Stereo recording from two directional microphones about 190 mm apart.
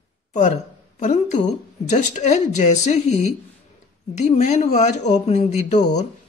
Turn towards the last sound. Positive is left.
turn(degrees=40)  # may be behind; listen again after turning